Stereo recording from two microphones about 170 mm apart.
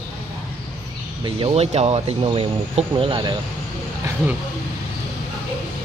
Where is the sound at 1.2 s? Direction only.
35° right (ahead or behind).